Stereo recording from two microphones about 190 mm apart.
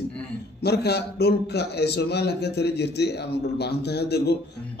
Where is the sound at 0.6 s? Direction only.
60° left (ahead or behind).